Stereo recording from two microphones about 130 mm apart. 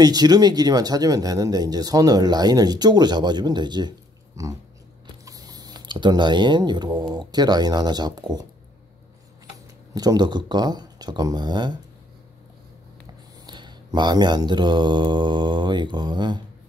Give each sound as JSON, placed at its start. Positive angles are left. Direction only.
{"t": 0.0, "sound": "speech", "side_deg": -30}
{"t": 4.4, "sound": "dog", "side_deg": -25}
{"t": 5.2, "sound": "speech", "side_deg": -30}
{"t": 9.9, "sound": "speech", "side_deg": -30}
{"t": 13.5, "sound": "speech", "side_deg": -35}